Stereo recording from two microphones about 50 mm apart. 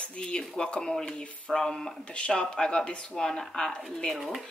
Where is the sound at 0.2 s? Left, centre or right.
Centre.